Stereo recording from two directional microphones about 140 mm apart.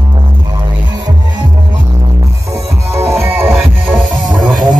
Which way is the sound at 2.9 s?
20° right (ahead or behind).